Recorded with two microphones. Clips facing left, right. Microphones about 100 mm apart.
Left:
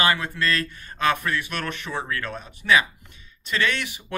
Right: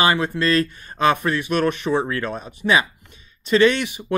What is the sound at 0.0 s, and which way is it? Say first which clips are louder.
Speech: right 4 dB; 25° right (ahead or behind).